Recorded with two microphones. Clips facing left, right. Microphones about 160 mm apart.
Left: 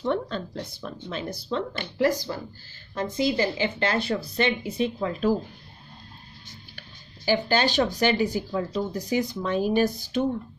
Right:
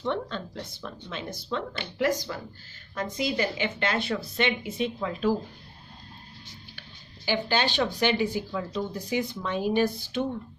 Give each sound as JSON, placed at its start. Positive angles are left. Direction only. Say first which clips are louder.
{"t": 0.0, "sound": "speech", "louder": "left 3 dB", "side_deg": 40}
{"t": 7.2, "sound": "speech", "louder": "left 4 dB", "side_deg": 40}